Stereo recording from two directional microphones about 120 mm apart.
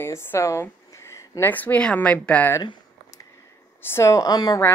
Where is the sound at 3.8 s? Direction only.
20° left (ahead or behind).